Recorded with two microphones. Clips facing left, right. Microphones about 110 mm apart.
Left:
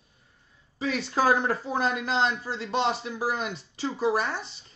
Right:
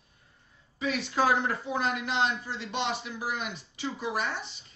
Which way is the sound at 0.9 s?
40° left (ahead or behind).